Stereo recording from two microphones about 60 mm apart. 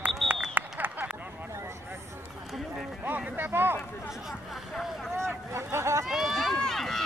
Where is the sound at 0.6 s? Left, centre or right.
Right.